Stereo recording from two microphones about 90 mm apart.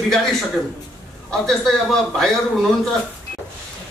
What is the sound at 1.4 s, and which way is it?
Speech, 5° left (ahead or behind).